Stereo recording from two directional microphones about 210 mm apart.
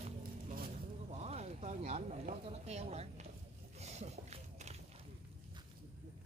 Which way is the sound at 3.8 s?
30° right (ahead or behind).